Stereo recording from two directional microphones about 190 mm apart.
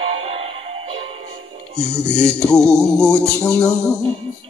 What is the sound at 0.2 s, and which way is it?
Music, 30° right (ahead or behind).